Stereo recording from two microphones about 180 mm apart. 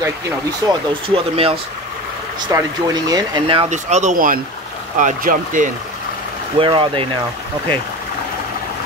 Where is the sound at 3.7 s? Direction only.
40° right (ahead or behind).